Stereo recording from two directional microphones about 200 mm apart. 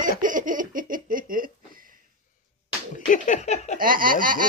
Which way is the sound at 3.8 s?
45° right (ahead or behind).